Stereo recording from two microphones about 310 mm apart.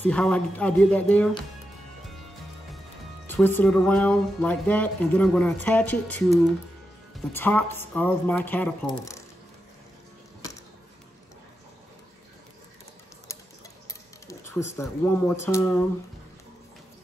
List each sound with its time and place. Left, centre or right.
0.0 s speech: centre
3.3 s speech: centre
13.8 s a sound: centre
14.8 s speech: centre